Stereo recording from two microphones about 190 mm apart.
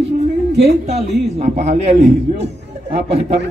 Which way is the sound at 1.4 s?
35° right (ahead or behind).